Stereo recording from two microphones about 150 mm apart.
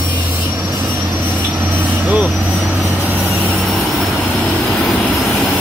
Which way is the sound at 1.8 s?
10° right (ahead or behind).